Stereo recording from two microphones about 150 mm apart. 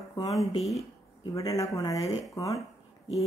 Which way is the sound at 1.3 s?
20° left (ahead or behind).